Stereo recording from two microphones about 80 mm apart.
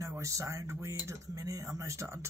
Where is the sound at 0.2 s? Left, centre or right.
Right.